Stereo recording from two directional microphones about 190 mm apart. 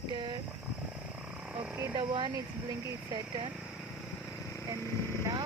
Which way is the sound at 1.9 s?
25° right (ahead or behind).